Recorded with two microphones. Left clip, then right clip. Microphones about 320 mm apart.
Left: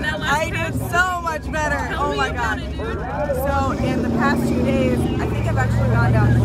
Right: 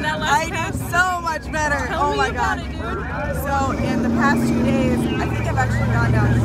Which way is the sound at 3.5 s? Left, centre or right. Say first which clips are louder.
Even; centre.